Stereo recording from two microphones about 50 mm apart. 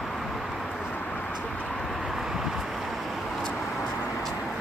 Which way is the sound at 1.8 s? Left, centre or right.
Centre.